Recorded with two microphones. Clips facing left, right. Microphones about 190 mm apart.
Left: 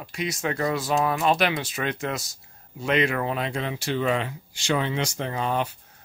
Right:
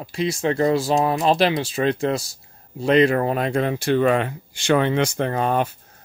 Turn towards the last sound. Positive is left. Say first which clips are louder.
# right 6 dB
turn(degrees=-50)  # may be behind; listen again after turning